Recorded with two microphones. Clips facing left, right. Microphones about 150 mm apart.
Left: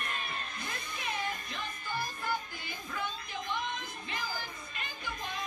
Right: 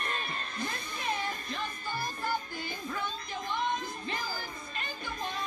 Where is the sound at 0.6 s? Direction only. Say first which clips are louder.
Right 4 dB; 35° right (ahead or behind).